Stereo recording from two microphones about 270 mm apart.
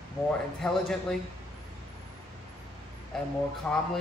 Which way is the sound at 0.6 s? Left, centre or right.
Centre.